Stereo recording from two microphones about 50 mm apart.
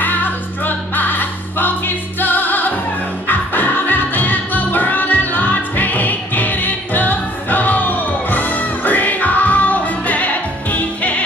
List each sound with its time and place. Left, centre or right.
0.0 s music: left